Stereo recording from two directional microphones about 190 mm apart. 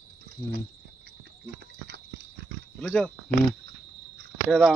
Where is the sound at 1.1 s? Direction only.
60° right (ahead or behind).